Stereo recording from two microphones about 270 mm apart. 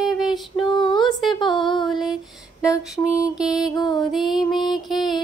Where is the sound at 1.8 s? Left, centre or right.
Centre.